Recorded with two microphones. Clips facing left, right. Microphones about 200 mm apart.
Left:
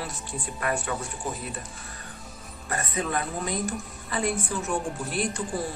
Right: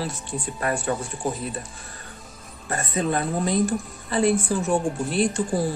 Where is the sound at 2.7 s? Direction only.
30° right (ahead or behind).